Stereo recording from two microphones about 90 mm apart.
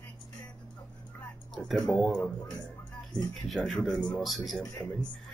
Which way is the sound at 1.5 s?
5° left (ahead or behind).